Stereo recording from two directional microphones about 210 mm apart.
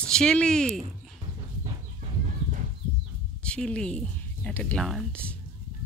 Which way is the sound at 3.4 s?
5° left (ahead or behind).